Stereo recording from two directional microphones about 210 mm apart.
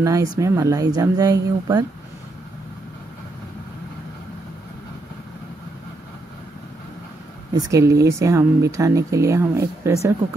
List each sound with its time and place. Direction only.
0.0 s speech: 15° right (ahead or behind)
7.5 s speech: 15° right (ahead or behind)